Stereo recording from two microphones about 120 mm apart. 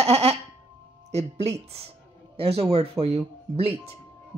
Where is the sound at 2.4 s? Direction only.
60° right (ahead or behind).